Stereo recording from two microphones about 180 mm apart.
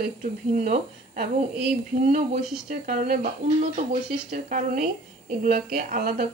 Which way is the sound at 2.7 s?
45° right (ahead or behind).